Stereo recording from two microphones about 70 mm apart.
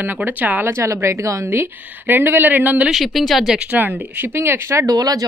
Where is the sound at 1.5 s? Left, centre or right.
Right.